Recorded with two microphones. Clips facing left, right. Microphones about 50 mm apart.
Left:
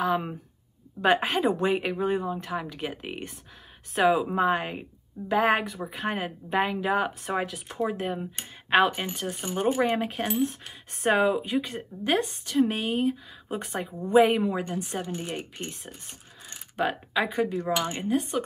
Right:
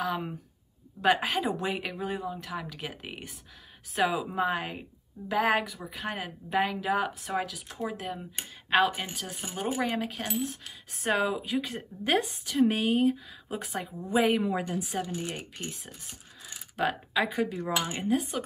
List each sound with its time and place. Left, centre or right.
1.0 s speech: centre
9.0 s speech: centre
11.1 s speech: centre